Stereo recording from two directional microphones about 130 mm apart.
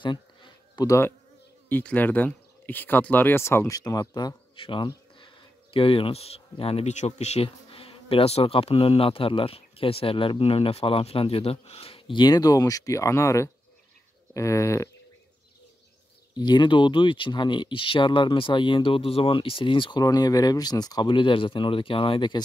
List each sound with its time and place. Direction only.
0.0 s a sound: 35° left (ahead or behind)
0.8 s speech: 20° left (ahead or behind)
16.3 s speech: 35° left (ahead or behind)